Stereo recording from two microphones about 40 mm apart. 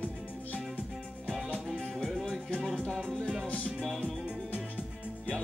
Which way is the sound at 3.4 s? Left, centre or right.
Left.